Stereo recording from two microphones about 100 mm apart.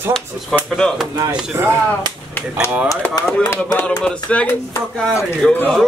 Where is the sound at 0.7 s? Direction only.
5° left (ahead or behind).